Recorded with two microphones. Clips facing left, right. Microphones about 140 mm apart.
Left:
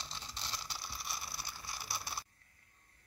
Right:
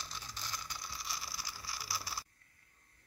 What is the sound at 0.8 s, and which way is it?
Ratchet, 25° left (ahead or behind).